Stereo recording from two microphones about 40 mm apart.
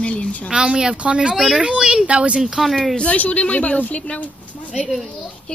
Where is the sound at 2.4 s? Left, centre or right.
Centre.